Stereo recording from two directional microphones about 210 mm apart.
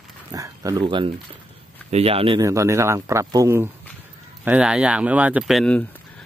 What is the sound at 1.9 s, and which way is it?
Speech, 30° right (ahead or behind).